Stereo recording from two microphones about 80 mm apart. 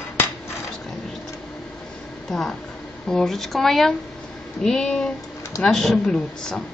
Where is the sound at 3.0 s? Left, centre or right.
Centre.